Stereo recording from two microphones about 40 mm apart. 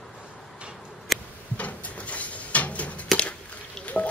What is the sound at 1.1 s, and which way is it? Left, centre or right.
Tick-tock, centre.